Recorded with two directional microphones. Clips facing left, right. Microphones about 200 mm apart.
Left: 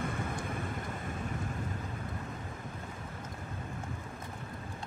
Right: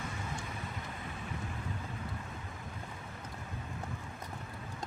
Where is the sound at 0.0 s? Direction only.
55° left (ahead or behind).